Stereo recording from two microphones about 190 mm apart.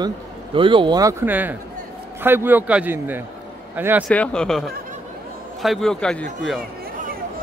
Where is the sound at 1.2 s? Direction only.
10° right (ahead or behind).